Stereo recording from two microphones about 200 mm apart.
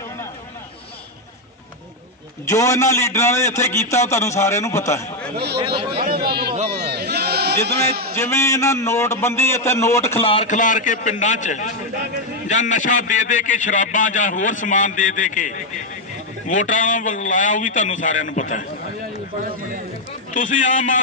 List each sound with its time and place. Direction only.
2.4 s a man's voice: 15° left (ahead or behind)
5.3 s chatter: 55° right (ahead or behind)
6.0 s a sound: 50° right (ahead or behind)
7.6 s a man's voice: 50° right (ahead or behind)
8.2 s a man's voice: 15° left (ahead or behind)
10.2 s a man's voice: 30° left (ahead or behind)
20.3 s a man's voice: 40° left (ahead or behind)